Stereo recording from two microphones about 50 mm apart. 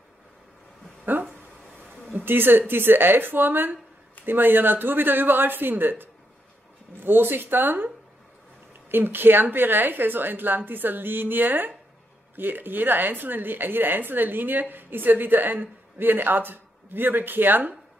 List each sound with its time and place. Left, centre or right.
1.1 s a woman's voice: right
8.9 s speech: right